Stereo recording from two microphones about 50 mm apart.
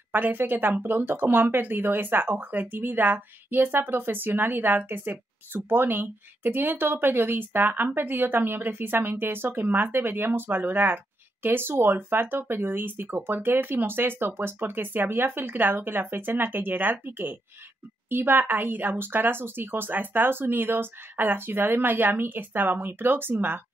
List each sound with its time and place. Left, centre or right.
0.1 s speech: right